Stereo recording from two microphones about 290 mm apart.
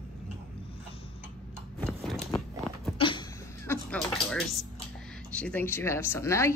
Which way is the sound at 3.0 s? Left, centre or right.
Centre.